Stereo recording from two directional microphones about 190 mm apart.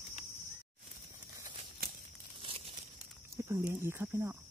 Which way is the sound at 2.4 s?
30° right (ahead or behind).